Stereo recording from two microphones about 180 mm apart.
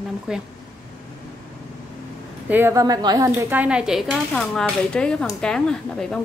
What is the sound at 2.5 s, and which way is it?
A woman's voice, 15° right (ahead or behind).